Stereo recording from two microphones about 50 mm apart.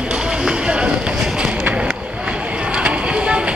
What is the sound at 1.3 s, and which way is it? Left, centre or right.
Run, centre.